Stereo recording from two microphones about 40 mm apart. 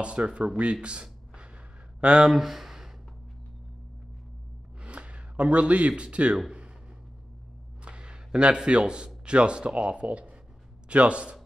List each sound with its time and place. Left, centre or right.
0.0 s speech: right
0.6 s a sound: right
2.0 s speech: right
2.3 s speech: centre
4.8 s speech: right
7.8 s a man's voice: right